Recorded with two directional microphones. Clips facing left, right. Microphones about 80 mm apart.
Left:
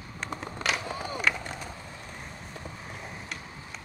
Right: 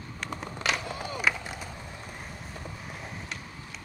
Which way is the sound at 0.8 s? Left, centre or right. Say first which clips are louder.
Left 1 dB; left.